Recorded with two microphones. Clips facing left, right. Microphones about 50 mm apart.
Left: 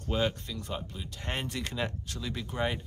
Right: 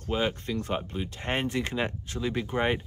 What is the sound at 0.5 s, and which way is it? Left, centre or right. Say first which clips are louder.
Speech: right 7 dB; right.